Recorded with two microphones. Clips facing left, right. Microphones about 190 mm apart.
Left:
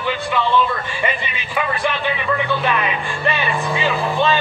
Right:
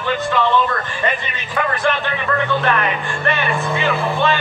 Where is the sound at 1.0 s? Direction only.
10° left (ahead or behind).